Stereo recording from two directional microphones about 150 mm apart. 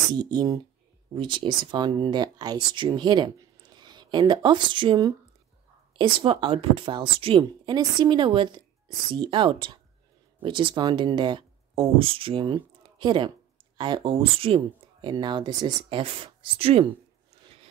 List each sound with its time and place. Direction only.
0.1 s a woman's voice: 25° right (ahead or behind)